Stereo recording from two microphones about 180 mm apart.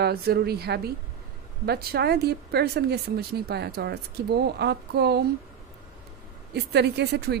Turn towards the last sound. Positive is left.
turn(degrees=-65)  # may be behind; listen again after turning